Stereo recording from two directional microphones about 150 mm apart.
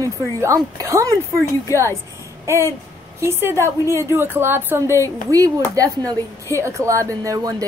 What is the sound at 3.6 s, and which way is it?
A woman's voice, 20° right (ahead or behind).